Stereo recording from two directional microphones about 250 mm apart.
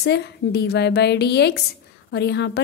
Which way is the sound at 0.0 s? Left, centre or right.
Left.